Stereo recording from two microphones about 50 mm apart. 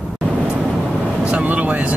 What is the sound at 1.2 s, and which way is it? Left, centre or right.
Speech, right.